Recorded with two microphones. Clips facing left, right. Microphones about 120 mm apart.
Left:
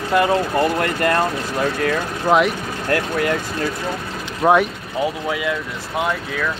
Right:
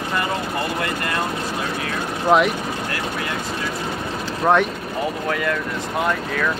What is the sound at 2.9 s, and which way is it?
Speech, 55° left (ahead or behind).